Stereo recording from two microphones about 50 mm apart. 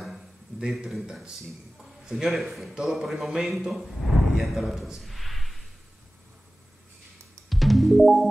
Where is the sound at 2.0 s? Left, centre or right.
Centre.